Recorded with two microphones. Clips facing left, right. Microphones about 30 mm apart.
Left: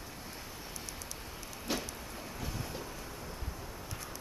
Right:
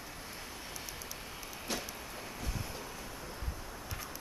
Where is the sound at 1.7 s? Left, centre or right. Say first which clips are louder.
Left 3 dB; centre.